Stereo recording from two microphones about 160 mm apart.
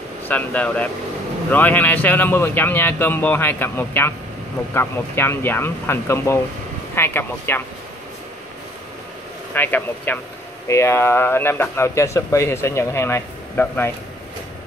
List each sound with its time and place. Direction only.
0.3 s speech: 10° left (ahead or behind)
9.5 s speech: 10° left (ahead or behind)